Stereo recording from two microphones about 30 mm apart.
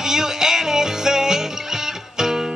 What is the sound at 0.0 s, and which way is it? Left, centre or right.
Music, centre.